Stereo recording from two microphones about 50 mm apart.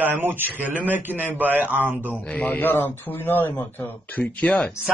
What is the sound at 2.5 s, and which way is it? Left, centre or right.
Speech, left.